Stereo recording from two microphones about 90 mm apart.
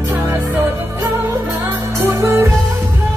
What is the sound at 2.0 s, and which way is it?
Music, 30° right (ahead or behind).